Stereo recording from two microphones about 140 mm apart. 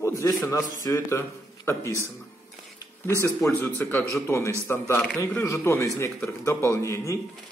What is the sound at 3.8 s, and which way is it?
A man's voice, 15° left (ahead or behind).